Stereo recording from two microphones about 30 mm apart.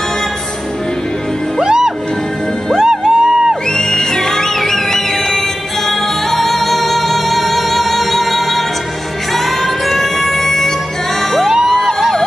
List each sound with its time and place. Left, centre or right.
2.7 s music: right
3.7 s music: left; by 8.6 s centre
9.8 s music: centre
11.8 s a sound: centre